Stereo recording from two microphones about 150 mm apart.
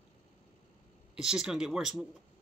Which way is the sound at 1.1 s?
5° right (ahead or behind).